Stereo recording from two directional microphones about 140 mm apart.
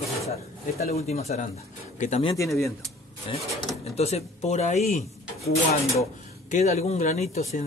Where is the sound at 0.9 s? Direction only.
50° left (ahead or behind).